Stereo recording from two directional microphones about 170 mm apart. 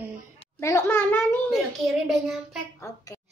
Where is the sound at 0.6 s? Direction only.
15° left (ahead or behind).